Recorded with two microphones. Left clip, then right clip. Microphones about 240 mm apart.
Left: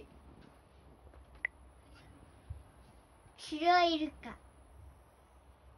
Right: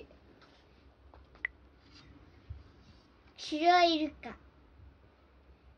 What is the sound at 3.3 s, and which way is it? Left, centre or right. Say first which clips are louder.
Speech: right 3 dB; centre.